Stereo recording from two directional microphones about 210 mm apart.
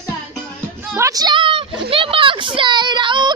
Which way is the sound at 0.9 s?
15° right (ahead or behind).